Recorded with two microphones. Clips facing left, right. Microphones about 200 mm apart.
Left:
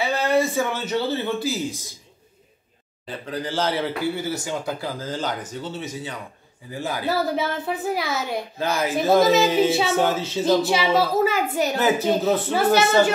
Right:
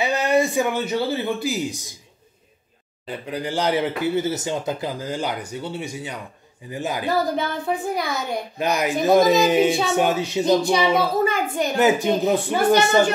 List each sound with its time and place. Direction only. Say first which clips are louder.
0.0 s a man's voice: right 1 dB; 15° right (ahead or behind)
3.3 s a man's voice: right 2 dB; 15° right (ahead or behind)
7.3 s speech: right 1 dB; 5° left (ahead or behind)
8.5 s a man's voice: right 2 dB; 15° right (ahead or behind)
10.6 s speech: right 1 dB; 5° left (ahead or behind)
12.3 s a man's voice: right 2 dB; 15° right (ahead or behind)